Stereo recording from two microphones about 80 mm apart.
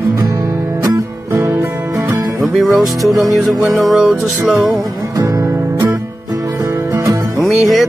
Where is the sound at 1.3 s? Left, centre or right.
Right.